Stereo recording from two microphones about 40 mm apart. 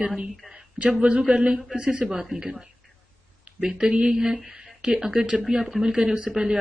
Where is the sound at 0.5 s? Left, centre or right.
Right.